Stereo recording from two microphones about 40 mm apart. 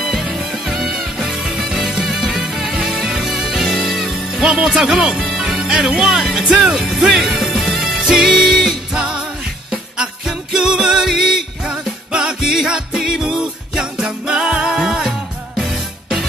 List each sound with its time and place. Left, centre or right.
0.5 s music: centre
4.0 s music: centre
4.6 s speech: centre
5.2 s music: centre
5.6 s speech: centre
6.9 s music: centre
8.9 s music: centre